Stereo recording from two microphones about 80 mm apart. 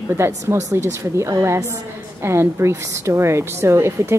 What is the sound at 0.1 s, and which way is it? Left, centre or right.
A woman's voice, right.